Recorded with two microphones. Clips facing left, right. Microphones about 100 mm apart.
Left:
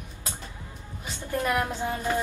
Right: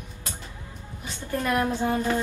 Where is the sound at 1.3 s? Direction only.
20° left (ahead or behind).